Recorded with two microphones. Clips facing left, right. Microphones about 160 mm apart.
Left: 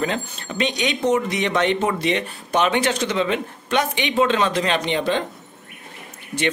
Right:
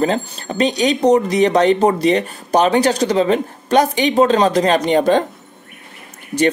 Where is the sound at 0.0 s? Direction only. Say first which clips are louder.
Right 7 dB; 35° right (ahead or behind).